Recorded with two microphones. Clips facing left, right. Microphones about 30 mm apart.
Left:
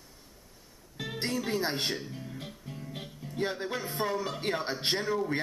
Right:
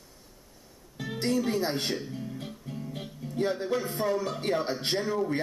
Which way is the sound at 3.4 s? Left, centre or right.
Centre.